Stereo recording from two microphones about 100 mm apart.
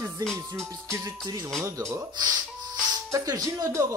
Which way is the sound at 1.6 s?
30° right (ahead or behind).